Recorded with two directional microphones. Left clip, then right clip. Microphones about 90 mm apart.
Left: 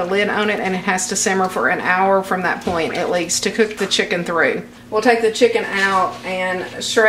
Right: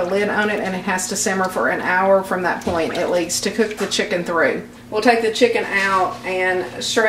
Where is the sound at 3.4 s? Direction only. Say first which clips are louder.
Left 2 dB; 20° left (ahead or behind).